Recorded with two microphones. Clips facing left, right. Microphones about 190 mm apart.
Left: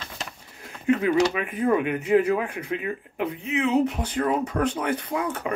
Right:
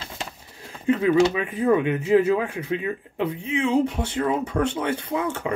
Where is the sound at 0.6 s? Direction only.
30° right (ahead or behind).